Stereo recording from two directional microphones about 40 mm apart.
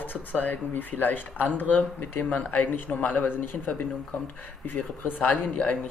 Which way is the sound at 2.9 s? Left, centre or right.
Left.